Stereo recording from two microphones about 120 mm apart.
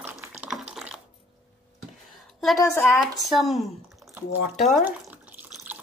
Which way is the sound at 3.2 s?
Centre (ahead or behind).